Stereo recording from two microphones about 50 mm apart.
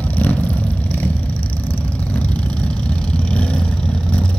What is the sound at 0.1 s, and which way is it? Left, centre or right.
Vehicle, left.